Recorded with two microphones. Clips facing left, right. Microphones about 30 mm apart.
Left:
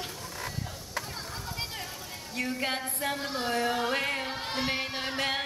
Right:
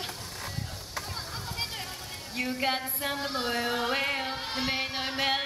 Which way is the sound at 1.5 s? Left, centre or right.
Centre.